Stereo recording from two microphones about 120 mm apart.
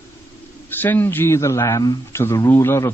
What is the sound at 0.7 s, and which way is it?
A man's voice, 15° left (ahead or behind).